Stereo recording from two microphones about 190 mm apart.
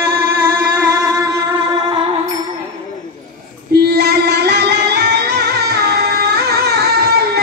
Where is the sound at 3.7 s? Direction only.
55° right (ahead or behind).